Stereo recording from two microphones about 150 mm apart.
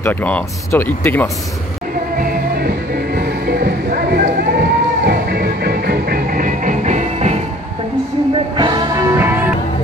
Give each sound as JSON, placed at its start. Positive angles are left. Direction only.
{"t": 0.0, "sound": "speech", "side_deg": 10}
{"t": 3.2, "sound": "music", "side_deg": -90}
{"t": 8.5, "sound": "music", "side_deg": -30}
{"t": 9.1, "sound": "music", "side_deg": -15}